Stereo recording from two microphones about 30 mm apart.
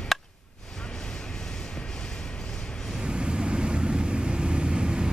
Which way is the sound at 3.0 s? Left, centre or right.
Right.